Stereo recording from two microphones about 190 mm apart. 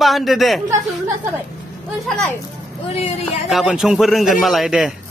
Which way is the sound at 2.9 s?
30° left (ahead or behind).